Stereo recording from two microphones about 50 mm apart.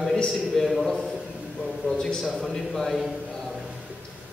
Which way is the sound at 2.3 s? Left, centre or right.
Centre.